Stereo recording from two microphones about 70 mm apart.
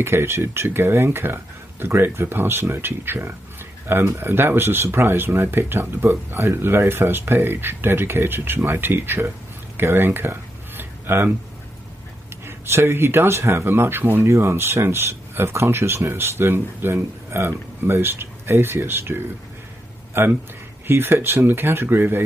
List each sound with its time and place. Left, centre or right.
0.0 s speech: right
9.8 s a sound: right
12.4 s speech: right